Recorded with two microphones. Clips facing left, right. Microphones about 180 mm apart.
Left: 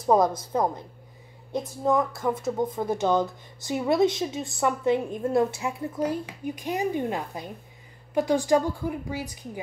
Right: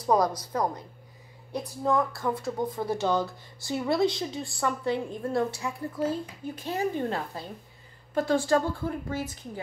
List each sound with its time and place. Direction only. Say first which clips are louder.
0.0 s a woman's voice: left 3 dB; 25° left (ahead or behind)